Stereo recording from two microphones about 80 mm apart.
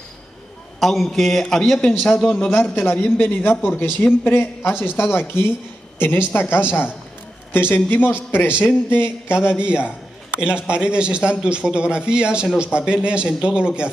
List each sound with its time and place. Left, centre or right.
0.7 s a man's voice: centre
2.5 s a man's voice: left
9.8 s a sound: left
10.4 s a man's voice: centre